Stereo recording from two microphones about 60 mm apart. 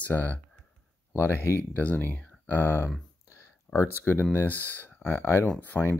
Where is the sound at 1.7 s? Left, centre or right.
Left.